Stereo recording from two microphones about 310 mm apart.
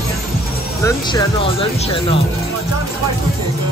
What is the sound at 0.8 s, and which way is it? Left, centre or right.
Speech, centre.